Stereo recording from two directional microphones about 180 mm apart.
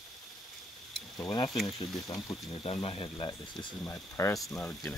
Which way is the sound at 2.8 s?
30° left (ahead or behind).